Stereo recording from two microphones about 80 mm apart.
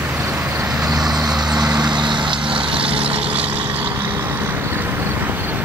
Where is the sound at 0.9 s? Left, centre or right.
Right.